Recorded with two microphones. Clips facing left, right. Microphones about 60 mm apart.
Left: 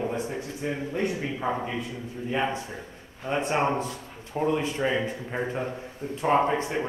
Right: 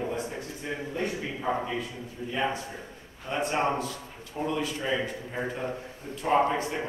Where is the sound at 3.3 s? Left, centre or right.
Left.